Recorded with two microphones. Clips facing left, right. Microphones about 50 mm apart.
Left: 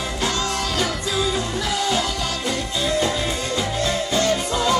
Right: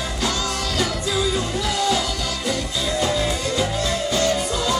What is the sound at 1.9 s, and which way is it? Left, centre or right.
Music, left.